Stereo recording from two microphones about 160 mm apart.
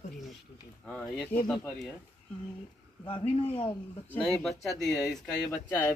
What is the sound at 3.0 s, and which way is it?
Speech, 35° left (ahead or behind).